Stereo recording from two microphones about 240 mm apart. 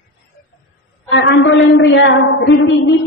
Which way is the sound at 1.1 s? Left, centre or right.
Left.